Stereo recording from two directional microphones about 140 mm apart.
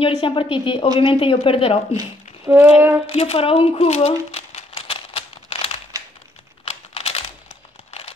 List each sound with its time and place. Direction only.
0.0 s speech: 40° left (ahead or behind)
2.0 s speech: 15° right (ahead or behind)
3.1 s typewriter: 45° left (ahead or behind)
6.6 s typing: 45° left (ahead or behind)